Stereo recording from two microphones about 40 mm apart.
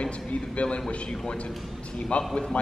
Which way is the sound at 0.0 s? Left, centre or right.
Left.